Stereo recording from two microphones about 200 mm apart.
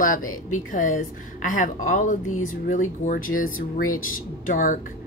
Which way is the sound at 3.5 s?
90° left.